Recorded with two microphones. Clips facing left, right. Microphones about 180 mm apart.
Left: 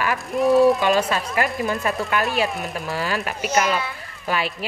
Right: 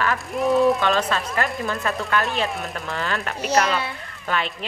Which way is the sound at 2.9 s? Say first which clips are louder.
Left 1 dB; 5° left (ahead or behind).